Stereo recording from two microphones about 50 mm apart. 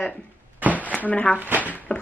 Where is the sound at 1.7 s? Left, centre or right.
Left.